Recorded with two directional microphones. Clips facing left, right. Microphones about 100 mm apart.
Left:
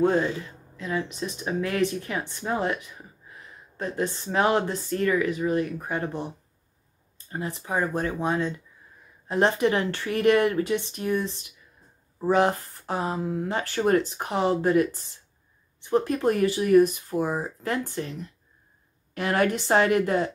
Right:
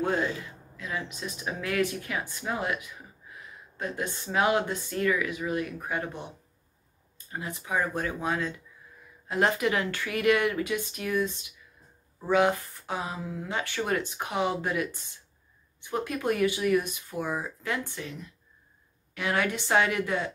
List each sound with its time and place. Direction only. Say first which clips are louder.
0.7 s speech: left 6 dB; 30° left (ahead or behind)